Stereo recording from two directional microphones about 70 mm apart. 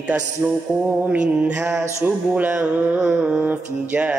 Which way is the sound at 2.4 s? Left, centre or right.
Right.